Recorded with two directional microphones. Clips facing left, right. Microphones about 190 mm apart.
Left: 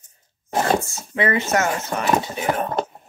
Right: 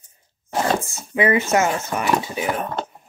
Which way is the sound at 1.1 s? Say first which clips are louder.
Right 2 dB; 15° right (ahead or behind).